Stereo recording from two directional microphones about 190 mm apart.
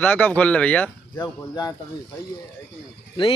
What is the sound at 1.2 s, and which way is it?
Speech, 20° left (ahead or behind).